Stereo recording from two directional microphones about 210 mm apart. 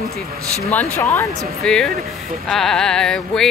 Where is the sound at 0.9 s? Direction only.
10° left (ahead or behind).